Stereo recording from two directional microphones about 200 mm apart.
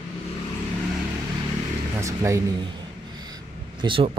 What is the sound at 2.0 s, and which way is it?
Speech, 15° right (ahead or behind).